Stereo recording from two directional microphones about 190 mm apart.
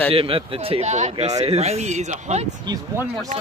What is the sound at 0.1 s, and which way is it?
Speech, 30° right (ahead or behind).